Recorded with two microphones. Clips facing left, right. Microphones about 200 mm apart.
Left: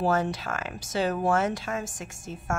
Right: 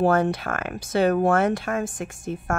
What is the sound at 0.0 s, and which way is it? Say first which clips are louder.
Speech: right 5 dB; 60° right (ahead or behind).